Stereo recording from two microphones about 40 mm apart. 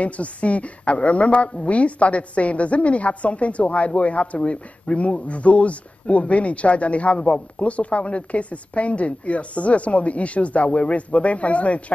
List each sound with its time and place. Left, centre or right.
0.0 s a woman's voice: left